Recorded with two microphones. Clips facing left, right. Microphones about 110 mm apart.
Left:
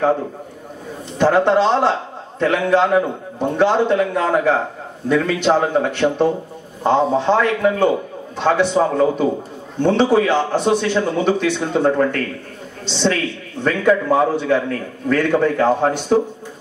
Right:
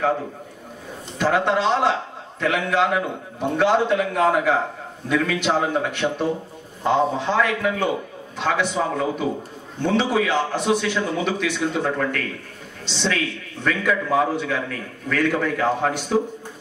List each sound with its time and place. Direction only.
1.1 s a man's voice: 35° left (ahead or behind)